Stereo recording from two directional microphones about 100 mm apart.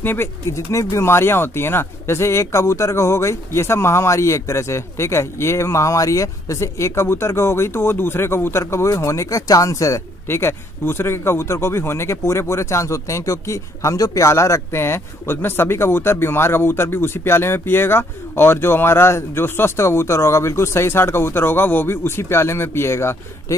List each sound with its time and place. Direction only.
0.0 s speech: 20° left (ahead or behind)